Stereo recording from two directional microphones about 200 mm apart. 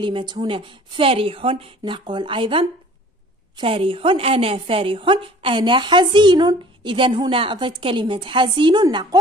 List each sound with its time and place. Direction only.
0.0 s a woman's voice: 20° right (ahead or behind)